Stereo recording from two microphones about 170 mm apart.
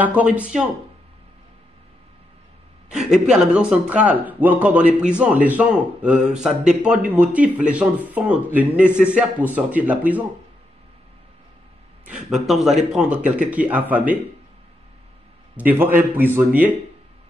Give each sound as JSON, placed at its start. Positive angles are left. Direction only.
{"t": 0.0, "sound": "a man's voice", "side_deg": -10}
{"t": 2.9, "sound": "a man's voice", "side_deg": -5}
{"t": 12.1, "sound": "a man's voice", "side_deg": 0}
{"t": 15.5, "sound": "a man's voice", "side_deg": -10}